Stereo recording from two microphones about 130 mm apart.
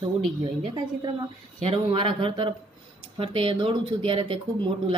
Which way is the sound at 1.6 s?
45° right (ahead or behind).